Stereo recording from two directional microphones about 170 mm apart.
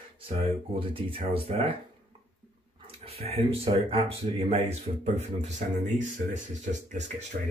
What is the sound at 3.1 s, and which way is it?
Speech, 35° right (ahead or behind).